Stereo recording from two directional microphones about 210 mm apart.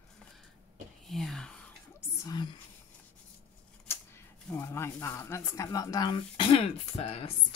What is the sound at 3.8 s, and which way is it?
Speech, 10° left (ahead or behind).